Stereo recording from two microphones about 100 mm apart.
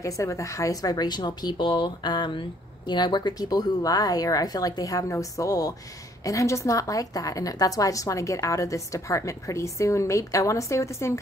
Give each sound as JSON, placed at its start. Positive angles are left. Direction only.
{"t": 0.0, "sound": "a woman's voice", "side_deg": 30}